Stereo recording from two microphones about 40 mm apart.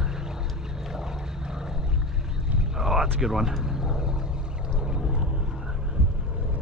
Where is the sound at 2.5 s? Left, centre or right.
Centre.